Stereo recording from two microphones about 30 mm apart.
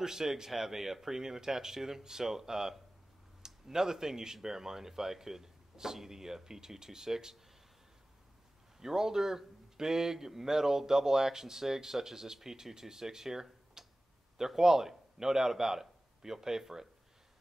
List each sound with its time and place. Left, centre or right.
0.0 s a man's voice: centre
8.7 s a man's voice: centre